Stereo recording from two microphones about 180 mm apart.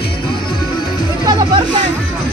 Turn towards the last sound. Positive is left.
turn(degrees=-25)  # may be behind; listen again after turning